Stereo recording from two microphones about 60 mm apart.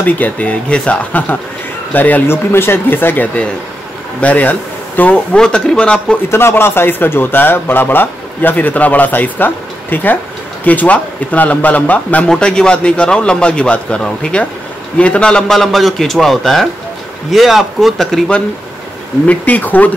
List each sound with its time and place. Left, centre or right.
0.0 s a man's voice: left
2.2 s speech: left
5.1 s a man's voice: centre
6.3 s a man's voice: left
12.3 s a man's voice: centre
19.2 s a man's voice: left